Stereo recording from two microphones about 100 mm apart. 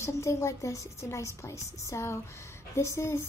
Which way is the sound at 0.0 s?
30° left (ahead or behind).